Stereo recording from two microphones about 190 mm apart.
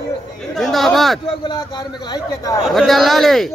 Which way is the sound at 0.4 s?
Centre (ahead or behind).